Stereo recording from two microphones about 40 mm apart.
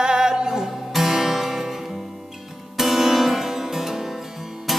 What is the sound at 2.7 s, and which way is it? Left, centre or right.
Music, centre.